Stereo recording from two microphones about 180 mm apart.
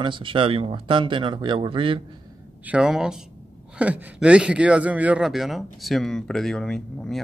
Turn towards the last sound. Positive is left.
turn(degrees=5)  # may be behind; listen again after turning